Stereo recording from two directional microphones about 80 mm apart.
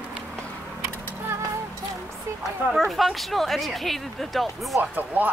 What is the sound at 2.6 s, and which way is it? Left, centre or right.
Speech, centre.